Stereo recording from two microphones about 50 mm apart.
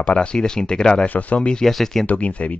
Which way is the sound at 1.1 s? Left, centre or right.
Left.